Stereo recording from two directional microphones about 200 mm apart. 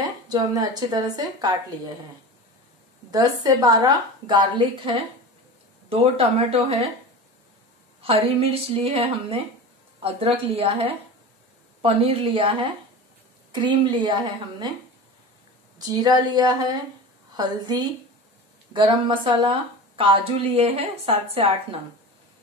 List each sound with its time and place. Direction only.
0.3 s a woman's voice: 20° right (ahead or behind)
3.1 s a woman's voice: 20° right (ahead or behind)
8.0 s a woman's voice: 30° right (ahead or behind)
15.8 s a woman's voice: 20° right (ahead or behind)
20.5 s a woman's voice: 30° right (ahead or behind)